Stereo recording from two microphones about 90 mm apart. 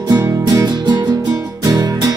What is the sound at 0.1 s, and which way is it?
Music, 45° right (ahead or behind).